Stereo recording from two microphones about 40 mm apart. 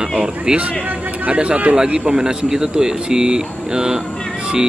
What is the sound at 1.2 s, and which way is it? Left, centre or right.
Speech, right.